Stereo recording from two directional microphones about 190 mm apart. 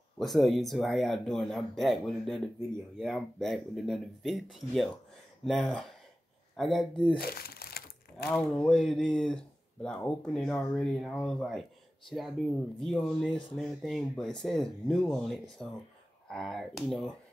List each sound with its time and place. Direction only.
0.2 s speech: centre (ahead or behind)
7.2 s crumpling: 55° left (ahead or behind)
8.3 s speech: 5° left (ahead or behind)